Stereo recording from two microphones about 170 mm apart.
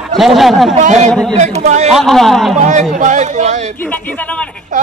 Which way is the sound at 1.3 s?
40° right (ahead or behind).